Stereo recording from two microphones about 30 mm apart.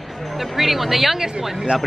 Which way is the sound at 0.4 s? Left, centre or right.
Centre.